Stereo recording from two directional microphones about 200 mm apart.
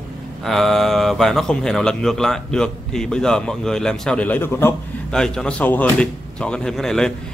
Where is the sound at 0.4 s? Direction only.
Centre (ahead or behind).